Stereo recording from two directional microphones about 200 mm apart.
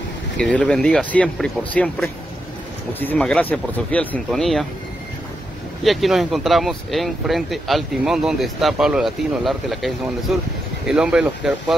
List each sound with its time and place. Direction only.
0.4 s speech: 5° left (ahead or behind)
5.9 s speech: centre (ahead or behind)